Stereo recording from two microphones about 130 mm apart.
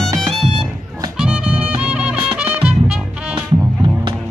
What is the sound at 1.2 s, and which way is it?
Music, 10° right (ahead or behind).